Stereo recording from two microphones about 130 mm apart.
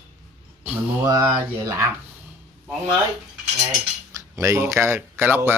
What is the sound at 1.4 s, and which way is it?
Speech, 20° right (ahead or behind).